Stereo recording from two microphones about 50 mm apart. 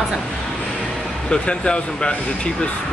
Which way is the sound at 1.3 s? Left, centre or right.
Left.